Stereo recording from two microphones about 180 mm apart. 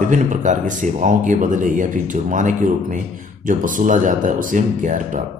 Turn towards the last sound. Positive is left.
turn(degrees=-45)  # may be behind; listen again after turning